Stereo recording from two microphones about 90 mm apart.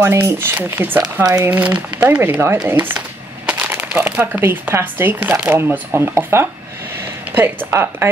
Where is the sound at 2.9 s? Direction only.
15° right (ahead or behind).